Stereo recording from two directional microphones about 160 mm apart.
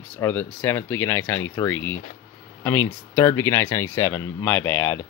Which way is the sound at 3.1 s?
20° left (ahead or behind).